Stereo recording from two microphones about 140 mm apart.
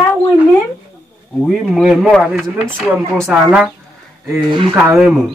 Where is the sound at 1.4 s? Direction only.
Centre (ahead or behind).